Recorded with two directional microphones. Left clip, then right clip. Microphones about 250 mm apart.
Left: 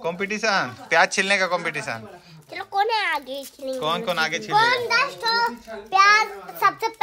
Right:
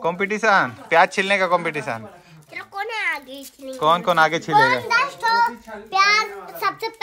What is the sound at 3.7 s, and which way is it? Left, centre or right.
Speech, centre.